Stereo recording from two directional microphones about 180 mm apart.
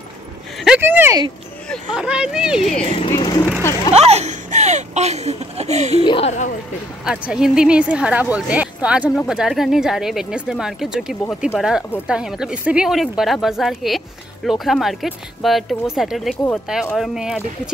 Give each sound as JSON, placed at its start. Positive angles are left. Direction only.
{"t": 0.6, "sound": "a sound", "side_deg": -5}
{"t": 2.8, "sound": "speech", "side_deg": 30}
{"t": 3.9, "sound": "speech", "side_deg": -35}
{"t": 6.0, "sound": "speech", "side_deg": 30}
{"t": 7.1, "sound": "speech", "side_deg": -5}